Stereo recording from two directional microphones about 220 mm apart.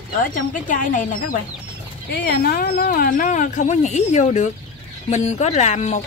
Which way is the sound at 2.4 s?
45° left (ahead or behind).